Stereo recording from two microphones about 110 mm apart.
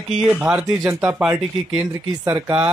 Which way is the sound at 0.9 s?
20° right (ahead or behind).